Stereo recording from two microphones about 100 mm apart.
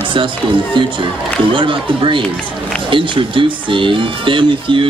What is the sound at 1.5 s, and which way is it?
Speech, 60° right (ahead or behind).